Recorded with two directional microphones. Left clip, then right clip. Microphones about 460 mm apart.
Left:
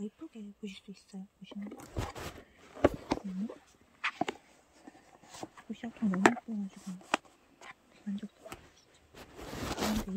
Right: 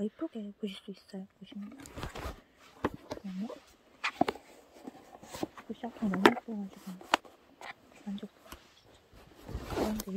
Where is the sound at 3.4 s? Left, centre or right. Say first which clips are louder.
Right 1 dB; centre.